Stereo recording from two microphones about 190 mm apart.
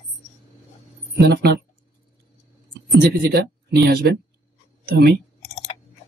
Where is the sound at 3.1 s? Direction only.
55° right (ahead or behind).